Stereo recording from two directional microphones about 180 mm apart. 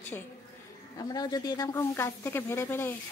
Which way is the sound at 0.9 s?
20° left (ahead or behind).